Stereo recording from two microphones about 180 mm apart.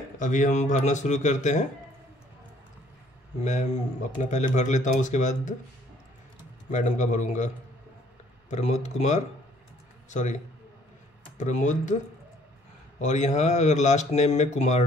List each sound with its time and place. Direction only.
0.2 s speech: 45° left (ahead or behind)
4.2 s speech: 40° left (ahead or behind)
6.7 s a man's voice: 40° left (ahead or behind)
11.3 s speech: 40° left (ahead or behind)
13.0 s speech: 40° left (ahead or behind)